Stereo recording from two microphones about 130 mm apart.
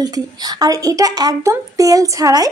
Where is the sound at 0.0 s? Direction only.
30° right (ahead or behind).